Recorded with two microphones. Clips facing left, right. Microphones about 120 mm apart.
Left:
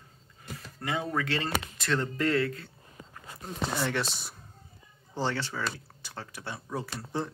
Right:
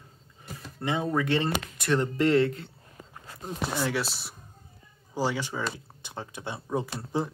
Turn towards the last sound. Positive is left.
turn(degrees=-15)  # may be behind; listen again after turning